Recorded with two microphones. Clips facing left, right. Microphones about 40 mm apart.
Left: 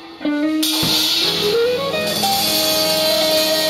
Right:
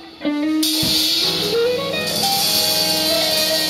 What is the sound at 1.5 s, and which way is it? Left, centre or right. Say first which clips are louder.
Music: even; centre.